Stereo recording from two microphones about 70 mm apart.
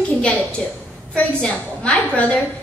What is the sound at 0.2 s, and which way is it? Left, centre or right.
A woman's voice, centre.